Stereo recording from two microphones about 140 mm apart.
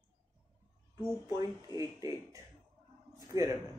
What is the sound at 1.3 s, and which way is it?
Speech, 25° right (ahead or behind).